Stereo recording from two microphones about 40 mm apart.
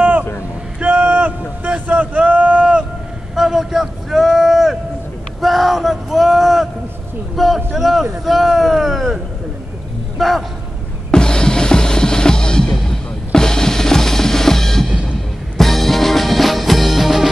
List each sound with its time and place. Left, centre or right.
0.7 s a sound: right
3.3 s a sound: centre
7.3 s a man's voice: centre
11.1 s drum kit: centre
13.3 s drum: centre
15.5 s music: centre